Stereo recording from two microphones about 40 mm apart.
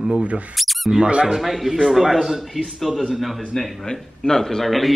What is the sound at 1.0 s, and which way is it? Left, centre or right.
Speech, right.